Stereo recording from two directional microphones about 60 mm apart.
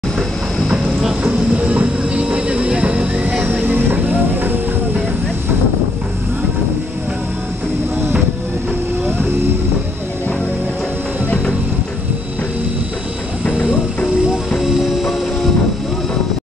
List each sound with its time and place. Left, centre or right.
0.7 s music: centre
1.2 s vehicle: right
14.6 s music: centre